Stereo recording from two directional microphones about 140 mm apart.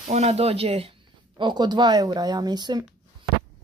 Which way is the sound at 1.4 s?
30° right (ahead or behind).